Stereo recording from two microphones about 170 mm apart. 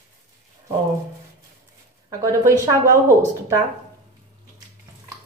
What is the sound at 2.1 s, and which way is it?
Speech, 20° right (ahead or behind).